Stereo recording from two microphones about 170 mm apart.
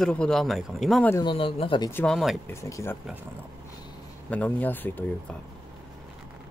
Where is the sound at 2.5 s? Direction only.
15° left (ahead or behind).